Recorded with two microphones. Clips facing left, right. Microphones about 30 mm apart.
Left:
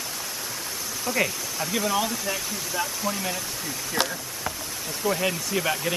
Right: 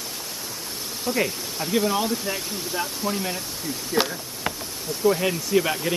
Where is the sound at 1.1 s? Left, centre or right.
Left.